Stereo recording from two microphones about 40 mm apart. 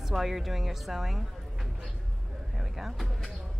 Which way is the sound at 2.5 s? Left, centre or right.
Centre.